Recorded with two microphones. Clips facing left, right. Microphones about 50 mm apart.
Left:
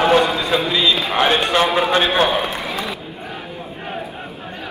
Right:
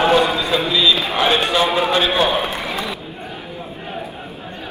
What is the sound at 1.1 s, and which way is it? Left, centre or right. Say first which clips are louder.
Music: left 1 dB; left.